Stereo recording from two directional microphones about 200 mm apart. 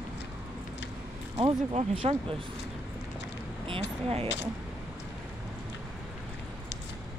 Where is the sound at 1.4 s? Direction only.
25° right (ahead or behind).